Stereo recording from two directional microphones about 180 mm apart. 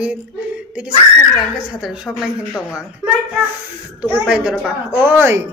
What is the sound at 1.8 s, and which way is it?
A woman's voice, centre (ahead or behind).